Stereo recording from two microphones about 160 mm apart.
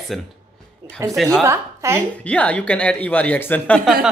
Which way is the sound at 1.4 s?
15° right (ahead or behind).